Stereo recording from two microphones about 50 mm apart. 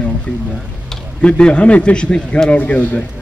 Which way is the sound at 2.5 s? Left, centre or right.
Left.